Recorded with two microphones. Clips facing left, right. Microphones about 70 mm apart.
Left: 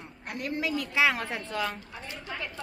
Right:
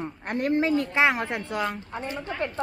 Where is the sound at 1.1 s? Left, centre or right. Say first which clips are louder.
Right 4 dB; centre.